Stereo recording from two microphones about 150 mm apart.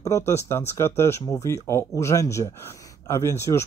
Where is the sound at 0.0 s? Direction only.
20° left (ahead or behind).